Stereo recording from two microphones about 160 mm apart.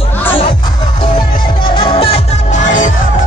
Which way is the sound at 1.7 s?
35° left (ahead or behind).